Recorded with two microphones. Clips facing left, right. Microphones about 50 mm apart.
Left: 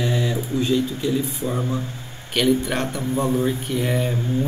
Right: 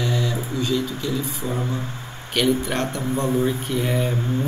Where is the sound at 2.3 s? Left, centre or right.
Centre.